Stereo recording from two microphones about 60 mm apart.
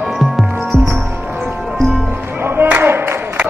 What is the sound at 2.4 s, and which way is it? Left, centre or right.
Music, right.